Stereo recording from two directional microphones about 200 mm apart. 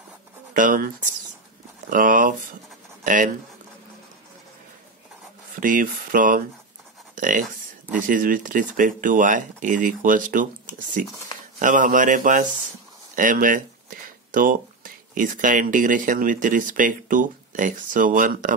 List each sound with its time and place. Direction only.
0.6 s speech: 45° right (ahead or behind)
3.0 s writing: 40° right (ahead or behind)
5.6 s speech: 40° right (ahead or behind)